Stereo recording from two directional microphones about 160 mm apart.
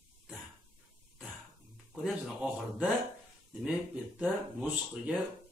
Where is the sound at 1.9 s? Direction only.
Centre (ahead or behind).